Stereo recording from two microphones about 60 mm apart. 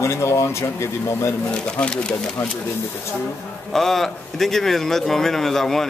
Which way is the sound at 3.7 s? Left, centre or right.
Centre.